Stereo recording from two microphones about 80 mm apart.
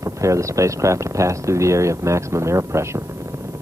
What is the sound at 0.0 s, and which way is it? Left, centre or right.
Speech, right.